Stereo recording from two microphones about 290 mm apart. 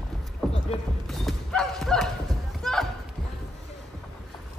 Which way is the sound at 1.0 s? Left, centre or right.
Centre.